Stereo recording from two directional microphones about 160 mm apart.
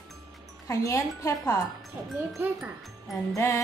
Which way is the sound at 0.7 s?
20° left (ahead or behind).